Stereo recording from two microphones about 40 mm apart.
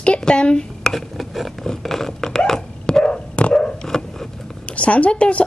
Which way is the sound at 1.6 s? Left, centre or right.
Centre.